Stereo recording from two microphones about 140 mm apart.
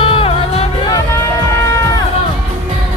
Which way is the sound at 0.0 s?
40° left (ahead or behind).